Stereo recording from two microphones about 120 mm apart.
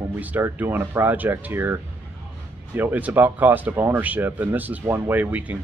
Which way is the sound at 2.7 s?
15° right (ahead or behind).